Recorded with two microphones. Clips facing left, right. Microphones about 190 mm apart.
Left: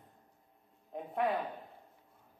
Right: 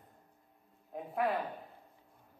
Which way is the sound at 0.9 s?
Centre (ahead or behind).